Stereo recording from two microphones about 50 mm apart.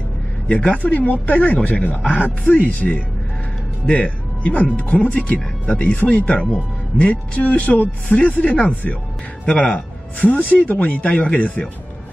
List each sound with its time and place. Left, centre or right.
0.5 s speech: left